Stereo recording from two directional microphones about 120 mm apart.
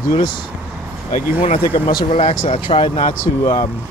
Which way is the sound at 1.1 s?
90° left.